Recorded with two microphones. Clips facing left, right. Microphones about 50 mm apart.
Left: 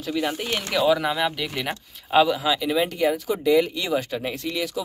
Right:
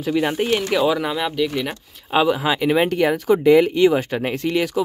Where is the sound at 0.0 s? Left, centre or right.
Right.